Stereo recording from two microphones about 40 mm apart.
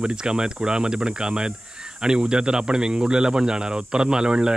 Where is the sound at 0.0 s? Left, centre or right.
Right.